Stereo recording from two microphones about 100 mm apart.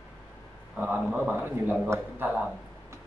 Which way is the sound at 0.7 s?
20° right (ahead or behind).